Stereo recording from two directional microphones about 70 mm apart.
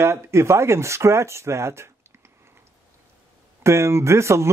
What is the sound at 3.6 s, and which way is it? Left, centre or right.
Speech, right.